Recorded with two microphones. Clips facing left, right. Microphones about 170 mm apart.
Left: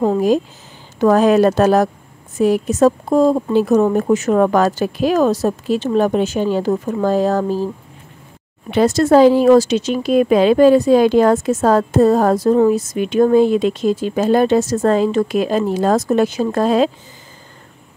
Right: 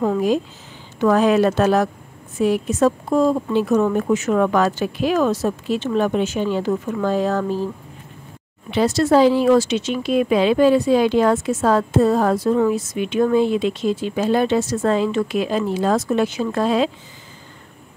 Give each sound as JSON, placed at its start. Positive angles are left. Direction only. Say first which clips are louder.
{"t": 0.0, "sound": "a woman's voice", "louder": "left 4 dB", "side_deg": 35}
{"t": 8.6, "sound": "speech", "louder": "left 4 dB", "side_deg": 50}